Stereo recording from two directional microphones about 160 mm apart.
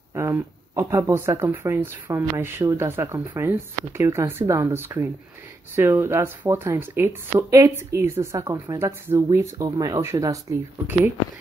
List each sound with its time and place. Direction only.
0.1 s speech: 20° right (ahead or behind)